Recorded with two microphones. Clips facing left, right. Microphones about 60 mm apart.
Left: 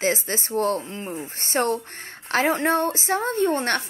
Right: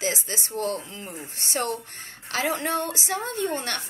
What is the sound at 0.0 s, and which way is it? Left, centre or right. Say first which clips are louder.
Speech: left 5 dB; left.